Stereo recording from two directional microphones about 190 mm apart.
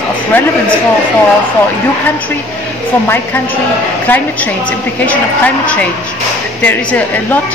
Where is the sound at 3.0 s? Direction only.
10° left (ahead or behind).